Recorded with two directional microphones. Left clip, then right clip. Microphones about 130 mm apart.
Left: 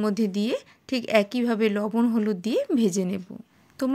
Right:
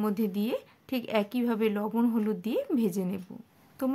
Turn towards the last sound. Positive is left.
turn(degrees=35)  # may be behind; listen again after turning